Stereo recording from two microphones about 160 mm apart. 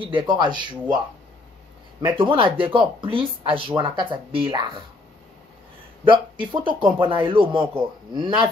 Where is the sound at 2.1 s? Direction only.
35° right (ahead or behind).